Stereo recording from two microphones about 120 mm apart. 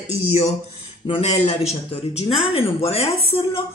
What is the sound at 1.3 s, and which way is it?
Speech, 60° left (ahead or behind).